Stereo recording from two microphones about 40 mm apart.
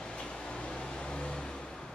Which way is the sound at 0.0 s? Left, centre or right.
Left.